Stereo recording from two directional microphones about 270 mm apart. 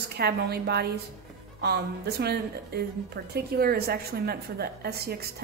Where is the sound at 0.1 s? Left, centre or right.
Right.